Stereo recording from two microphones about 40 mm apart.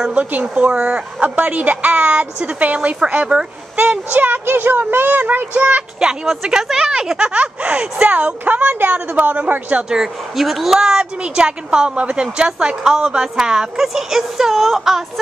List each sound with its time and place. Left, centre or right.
0.1 s a woman's voice: right
3.7 s a sound: right
4.5 s speech: right
5.6 s a woman's voice: right
5.9 s a woman's voice: centre
8.1 s a woman's voice: right
10.3 s speech: centre
10.9 s a woman's voice: right